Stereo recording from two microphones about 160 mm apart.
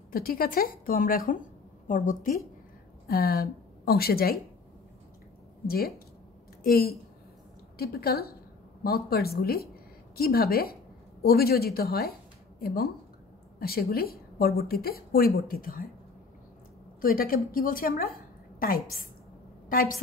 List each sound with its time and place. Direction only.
0.1 s a woman's voice: 65° left (ahead or behind)
3.1 s a woman's voice: 70° left (ahead or behind)
5.7 s a woman's voice: 70° left (ahead or behind)
17.0 s a woman's voice: 65° left (ahead or behind)